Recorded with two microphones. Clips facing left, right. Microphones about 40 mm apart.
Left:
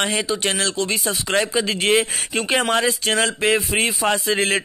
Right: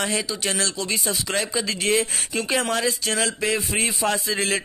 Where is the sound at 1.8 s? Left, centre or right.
Left.